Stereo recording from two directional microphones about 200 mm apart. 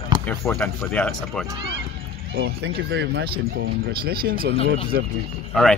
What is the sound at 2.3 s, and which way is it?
Speech, 55° right (ahead or behind).